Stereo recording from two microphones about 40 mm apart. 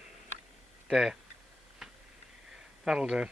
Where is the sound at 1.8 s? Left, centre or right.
Centre.